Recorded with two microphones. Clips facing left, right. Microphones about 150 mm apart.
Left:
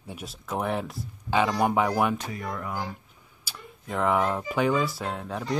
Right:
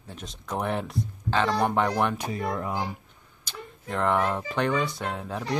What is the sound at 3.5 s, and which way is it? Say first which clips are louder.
Speech: right 1 dB; 5° left (ahead or behind).